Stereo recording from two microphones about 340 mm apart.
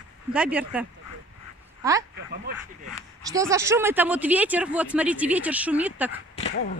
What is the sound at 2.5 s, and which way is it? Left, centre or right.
Speech, right.